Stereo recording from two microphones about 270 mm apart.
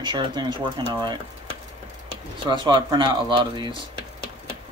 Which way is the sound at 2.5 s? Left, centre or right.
Centre.